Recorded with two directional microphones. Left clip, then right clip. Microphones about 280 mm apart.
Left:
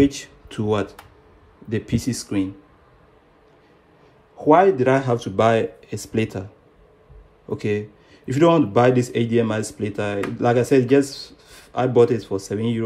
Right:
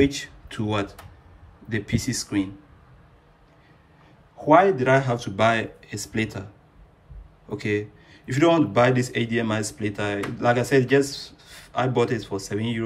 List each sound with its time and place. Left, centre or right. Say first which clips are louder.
0.0 s a man's voice: left 2 dB; centre
4.5 s a man's voice: left 2 dB; centre
7.5 s a man's voice: left 2 dB; centre